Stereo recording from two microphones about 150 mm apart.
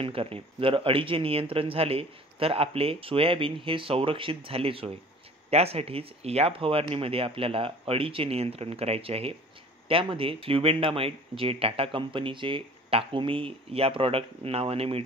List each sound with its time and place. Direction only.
0.0 s speech: 40° right (ahead or behind)